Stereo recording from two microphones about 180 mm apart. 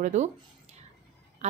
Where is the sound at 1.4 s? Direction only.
40° right (ahead or behind).